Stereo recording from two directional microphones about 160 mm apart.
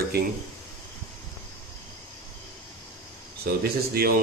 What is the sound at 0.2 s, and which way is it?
Speech, 80° right.